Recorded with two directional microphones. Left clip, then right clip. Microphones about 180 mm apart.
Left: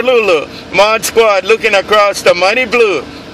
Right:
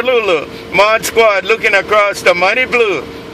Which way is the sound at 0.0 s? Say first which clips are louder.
Left 3 dB; 35° left (ahead or behind).